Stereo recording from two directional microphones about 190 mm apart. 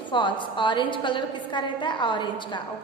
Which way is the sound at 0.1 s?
25° left (ahead or behind).